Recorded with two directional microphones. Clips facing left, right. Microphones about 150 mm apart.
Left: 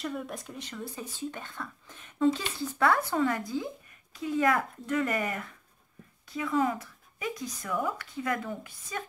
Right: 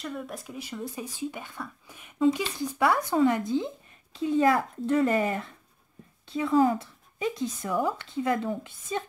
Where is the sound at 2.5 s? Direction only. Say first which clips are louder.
Right 1 dB; 20° right (ahead or behind).